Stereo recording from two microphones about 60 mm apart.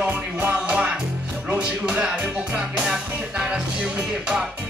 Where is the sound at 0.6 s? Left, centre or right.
Right.